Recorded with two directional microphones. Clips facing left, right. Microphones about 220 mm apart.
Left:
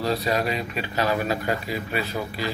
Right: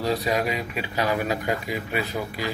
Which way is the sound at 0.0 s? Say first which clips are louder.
Even; 15° right (ahead or behind).